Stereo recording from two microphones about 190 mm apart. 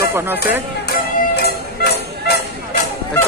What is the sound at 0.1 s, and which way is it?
Speech, 10° right (ahead or behind).